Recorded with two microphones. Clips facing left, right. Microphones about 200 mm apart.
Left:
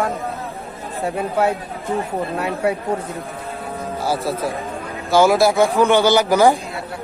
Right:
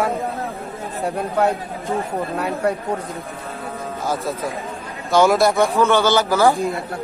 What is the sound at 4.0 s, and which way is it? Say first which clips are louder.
Speech: left 2 dB; 30° left (ahead or behind).